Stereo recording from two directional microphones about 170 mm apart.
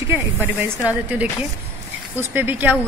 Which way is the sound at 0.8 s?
10° right (ahead or behind).